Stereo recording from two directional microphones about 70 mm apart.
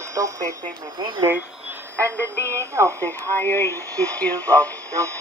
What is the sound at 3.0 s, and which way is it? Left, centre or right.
Speech, left.